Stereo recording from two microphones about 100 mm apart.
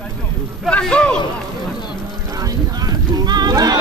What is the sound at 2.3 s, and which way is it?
Speech, 40° right (ahead or behind).